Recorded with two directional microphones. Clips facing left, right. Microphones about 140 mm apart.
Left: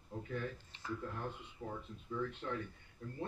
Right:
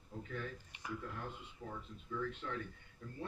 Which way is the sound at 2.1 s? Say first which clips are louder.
Left 2 dB; 30° left (ahead or behind).